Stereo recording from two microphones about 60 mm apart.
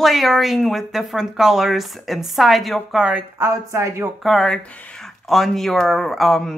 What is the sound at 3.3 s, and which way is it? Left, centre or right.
Speech, right.